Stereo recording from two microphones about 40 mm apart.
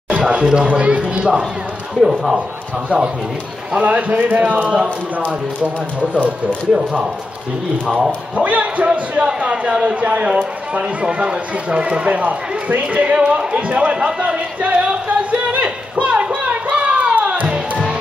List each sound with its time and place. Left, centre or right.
0.4 s speech: centre
0.7 s speech: right
2.0 s speech: centre
3.8 s speech: right
8.4 s speech: right
9.2 s speech: right
14.9 s a sound: right